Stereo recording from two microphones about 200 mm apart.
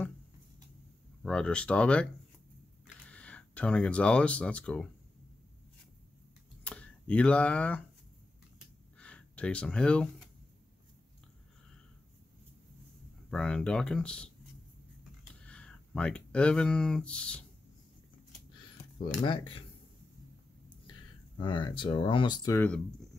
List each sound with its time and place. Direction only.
1.2 s speech: 5° left (ahead or behind)
3.1 s speech: 5° left (ahead or behind)
6.6 s speech: 5° left (ahead or behind)
8.9 s a sound: 5° left (ahead or behind)
13.3 s speech: 5° left (ahead or behind)
15.4 s speech: 5° left (ahead or behind)
18.9 s speech: 25° left (ahead or behind)
21.4 s speech: 25° left (ahead or behind)